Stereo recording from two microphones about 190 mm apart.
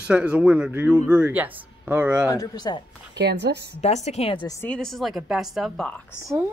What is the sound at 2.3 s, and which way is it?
Speech, 20° left (ahead or behind).